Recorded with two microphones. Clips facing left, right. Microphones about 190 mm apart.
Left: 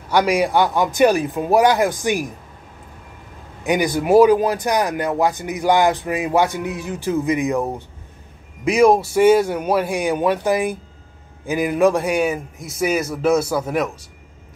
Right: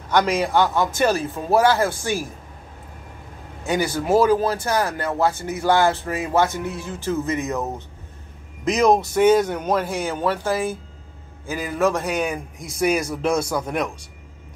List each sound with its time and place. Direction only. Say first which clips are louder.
0.1 s speech: left 2 dB; 10° left (ahead or behind)
3.6 s speech: left 4 dB; 15° left (ahead or behind)